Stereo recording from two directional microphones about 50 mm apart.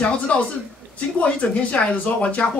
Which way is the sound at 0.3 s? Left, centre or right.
Left.